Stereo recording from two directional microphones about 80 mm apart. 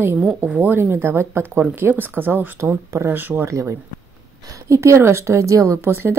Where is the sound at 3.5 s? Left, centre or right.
Right.